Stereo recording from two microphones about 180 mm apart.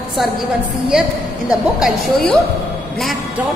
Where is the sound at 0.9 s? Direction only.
5° right (ahead or behind).